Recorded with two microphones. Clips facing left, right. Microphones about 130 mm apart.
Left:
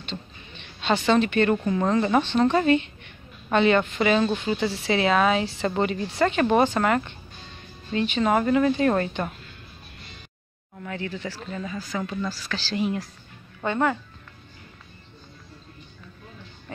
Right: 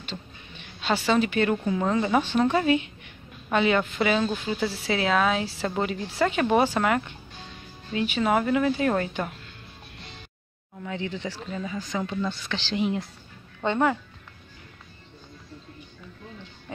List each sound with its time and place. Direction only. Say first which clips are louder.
0.0 s a woman's voice: left 2 dB; 10° right (ahead or behind)
11.0 s speech: even; 20° right (ahead or behind)
13.7 s speech: right 1 dB; 10° right (ahead or behind)